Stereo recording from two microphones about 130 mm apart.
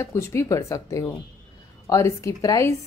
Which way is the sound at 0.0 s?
20° left (ahead or behind).